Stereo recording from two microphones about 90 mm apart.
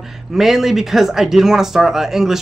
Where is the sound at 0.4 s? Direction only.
Centre (ahead or behind).